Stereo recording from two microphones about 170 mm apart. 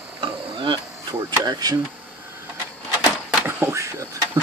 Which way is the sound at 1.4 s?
25° right (ahead or behind).